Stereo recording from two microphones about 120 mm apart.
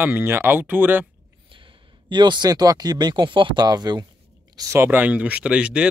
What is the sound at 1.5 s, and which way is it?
Speech, 45° right (ahead or behind).